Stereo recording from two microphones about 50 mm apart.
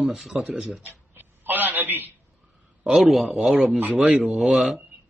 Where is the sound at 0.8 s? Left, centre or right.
Right.